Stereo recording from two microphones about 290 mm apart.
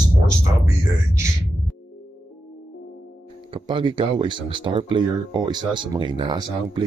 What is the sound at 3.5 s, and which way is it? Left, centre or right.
Speech, centre.